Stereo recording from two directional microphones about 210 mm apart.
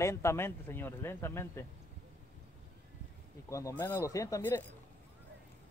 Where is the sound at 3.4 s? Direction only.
15° left (ahead or behind).